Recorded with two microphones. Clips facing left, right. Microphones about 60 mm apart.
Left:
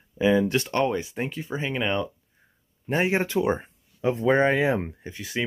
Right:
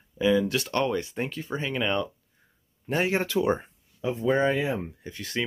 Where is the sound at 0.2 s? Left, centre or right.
Left.